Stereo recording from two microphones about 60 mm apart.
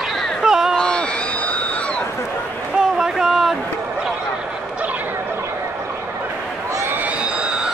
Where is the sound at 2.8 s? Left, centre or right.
Centre.